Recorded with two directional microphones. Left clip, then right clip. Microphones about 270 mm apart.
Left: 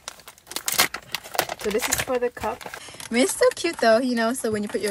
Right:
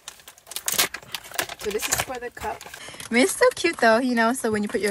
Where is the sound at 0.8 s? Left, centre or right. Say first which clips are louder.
Left 4 dB; left.